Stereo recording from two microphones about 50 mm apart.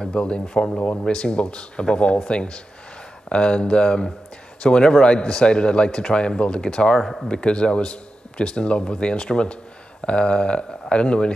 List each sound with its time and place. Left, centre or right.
0.0 s speech: left
7.0 s speech: centre
7.2 s speech: centre